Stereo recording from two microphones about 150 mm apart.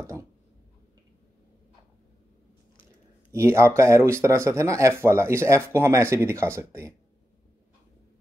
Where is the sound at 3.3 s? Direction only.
20° right (ahead or behind).